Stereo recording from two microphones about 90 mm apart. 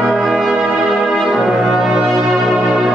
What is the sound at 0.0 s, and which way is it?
Brass instrument, 5° right (ahead or behind).